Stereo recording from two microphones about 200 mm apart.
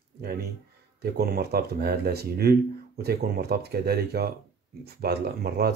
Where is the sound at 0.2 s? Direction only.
50° right (ahead or behind).